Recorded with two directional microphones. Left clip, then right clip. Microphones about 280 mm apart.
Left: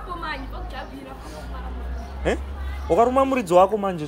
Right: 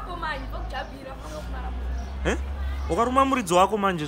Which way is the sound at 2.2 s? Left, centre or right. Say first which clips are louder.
Left 3 dB; centre.